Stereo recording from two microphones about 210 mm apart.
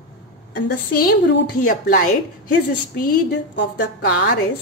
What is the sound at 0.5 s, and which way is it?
A woman's voice, 45° left (ahead or behind).